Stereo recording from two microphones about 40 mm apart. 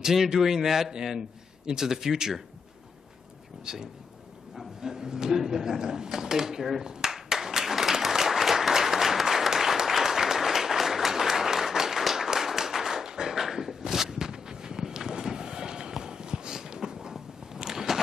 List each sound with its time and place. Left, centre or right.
0.0 s speech: centre
3.6 s speech: centre
4.8 s a sound: centre
5.4 s speech: centre
6.9 s applause: centre